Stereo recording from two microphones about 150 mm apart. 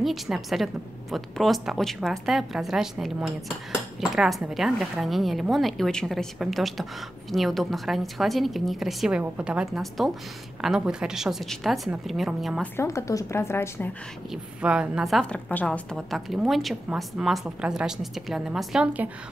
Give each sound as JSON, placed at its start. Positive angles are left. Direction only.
{"t": 0.0, "sound": "a woman's voice", "side_deg": 0}
{"t": 12.7, "sound": "a woman's voice", "side_deg": 20}
{"t": 14.3, "sound": "a woman's voice", "side_deg": -5}